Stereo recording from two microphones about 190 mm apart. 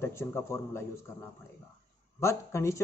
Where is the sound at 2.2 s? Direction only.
15° left (ahead or behind).